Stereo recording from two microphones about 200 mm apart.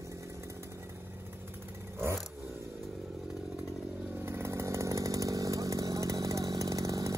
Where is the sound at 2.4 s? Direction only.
15° right (ahead or behind).